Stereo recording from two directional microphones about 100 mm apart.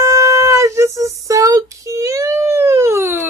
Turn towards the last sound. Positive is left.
turn(degrees=-25)  # may be behind; listen again after turning